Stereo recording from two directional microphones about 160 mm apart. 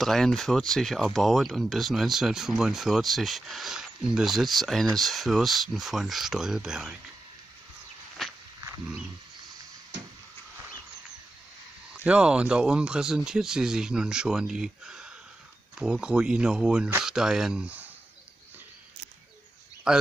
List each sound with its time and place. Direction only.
0.0 s speech: centre (ahead or behind)
8.2 s wild animals: centre (ahead or behind)
11.9 s speech: 5° right (ahead or behind)
19.9 s speech: 5° right (ahead or behind)